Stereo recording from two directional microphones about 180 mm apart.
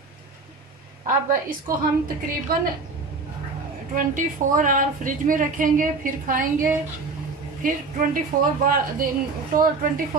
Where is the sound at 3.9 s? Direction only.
45° right (ahead or behind).